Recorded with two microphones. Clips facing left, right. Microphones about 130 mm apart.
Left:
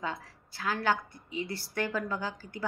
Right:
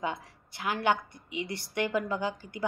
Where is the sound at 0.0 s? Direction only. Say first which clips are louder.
Right 3 dB; 20° right (ahead or behind).